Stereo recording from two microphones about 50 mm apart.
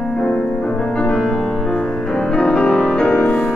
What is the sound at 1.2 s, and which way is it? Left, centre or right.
Music, centre.